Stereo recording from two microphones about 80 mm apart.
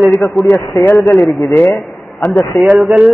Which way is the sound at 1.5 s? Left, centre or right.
Centre.